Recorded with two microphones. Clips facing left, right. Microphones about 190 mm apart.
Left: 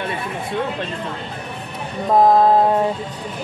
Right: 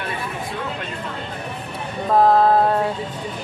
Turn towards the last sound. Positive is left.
turn(degrees=15)  # may be behind; listen again after turning